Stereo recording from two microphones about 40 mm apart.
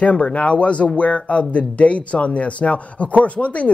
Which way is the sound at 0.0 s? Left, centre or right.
Left.